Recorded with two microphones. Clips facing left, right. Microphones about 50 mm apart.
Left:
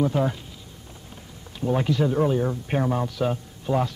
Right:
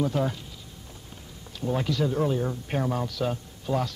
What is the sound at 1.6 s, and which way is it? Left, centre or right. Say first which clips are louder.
A man's voice: left 4 dB; centre.